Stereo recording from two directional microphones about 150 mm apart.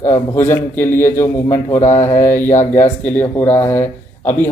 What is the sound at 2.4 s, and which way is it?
Speech, 55° left (ahead or behind).